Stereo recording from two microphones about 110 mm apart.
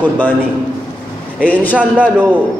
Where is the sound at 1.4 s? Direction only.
15° left (ahead or behind).